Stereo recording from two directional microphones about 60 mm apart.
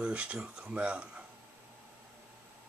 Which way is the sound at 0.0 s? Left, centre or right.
Right.